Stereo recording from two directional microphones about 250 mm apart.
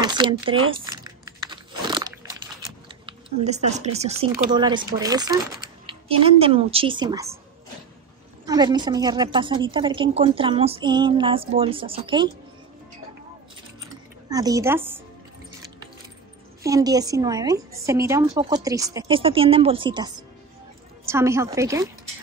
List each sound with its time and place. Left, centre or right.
0.0 s typing: centre
3.1 s a sound: right
4.2 s a woman's voice: centre
8.5 s a woman's voice: centre
14.3 s a woman's voice: centre
16.6 s a woman's voice: centre